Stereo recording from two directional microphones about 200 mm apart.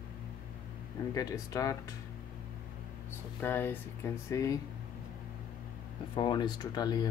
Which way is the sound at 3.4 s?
10° left (ahead or behind).